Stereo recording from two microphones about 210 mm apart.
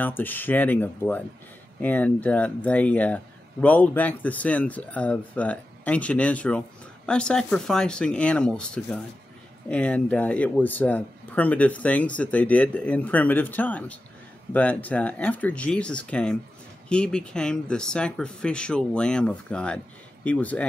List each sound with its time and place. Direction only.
0.0 s speech: 10° left (ahead or behind)